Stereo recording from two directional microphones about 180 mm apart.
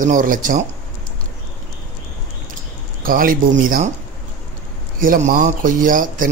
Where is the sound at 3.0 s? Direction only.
50° right (ahead or behind).